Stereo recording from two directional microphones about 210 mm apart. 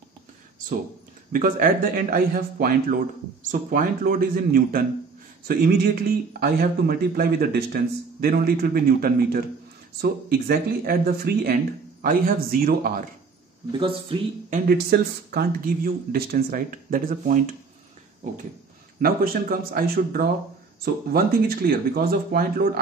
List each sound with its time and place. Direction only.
1.3 s a man's voice: 45° right (ahead or behind)
13.7 s speech: 25° right (ahead or behind)
14.5 s a man's voice: 50° right (ahead or behind)
18.2 s a sound: 35° right (ahead or behind)
18.9 s a man's voice: 45° right (ahead or behind)